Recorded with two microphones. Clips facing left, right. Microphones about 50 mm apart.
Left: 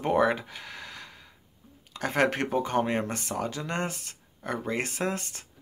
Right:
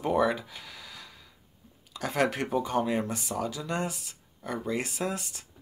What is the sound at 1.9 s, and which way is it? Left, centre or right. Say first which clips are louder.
Speech: left 2 dB; left.